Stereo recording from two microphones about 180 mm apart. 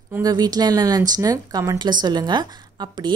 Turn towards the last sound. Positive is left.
turn(degrees=-25)  # may be behind; listen again after turning